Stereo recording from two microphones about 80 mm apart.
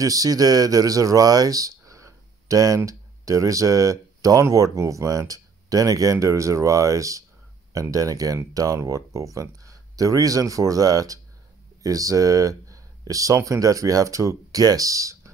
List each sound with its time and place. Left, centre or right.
0.0 s speech: right